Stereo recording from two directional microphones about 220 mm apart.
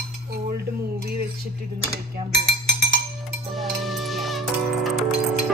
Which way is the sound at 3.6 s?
Centre (ahead or behind).